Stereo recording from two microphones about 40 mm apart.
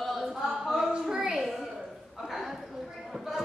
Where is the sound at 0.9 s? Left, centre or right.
Right.